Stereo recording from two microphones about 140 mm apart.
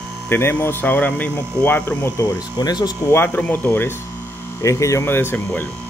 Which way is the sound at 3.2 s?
15° left (ahead or behind).